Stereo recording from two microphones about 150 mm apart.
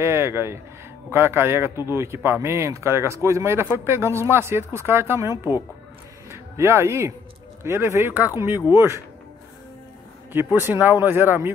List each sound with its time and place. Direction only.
0.0 s speech: 20° right (ahead or behind)
10.3 s speech: 15° right (ahead or behind)